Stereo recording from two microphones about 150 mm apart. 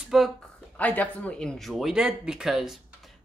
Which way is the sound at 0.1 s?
Centre (ahead or behind).